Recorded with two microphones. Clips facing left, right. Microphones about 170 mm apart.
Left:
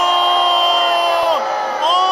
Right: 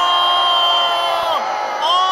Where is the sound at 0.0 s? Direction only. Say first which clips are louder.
Left 3 dB; 15° left (ahead or behind).